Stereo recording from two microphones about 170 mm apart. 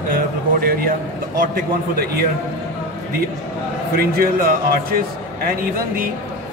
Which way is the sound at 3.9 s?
60° right (ahead or behind).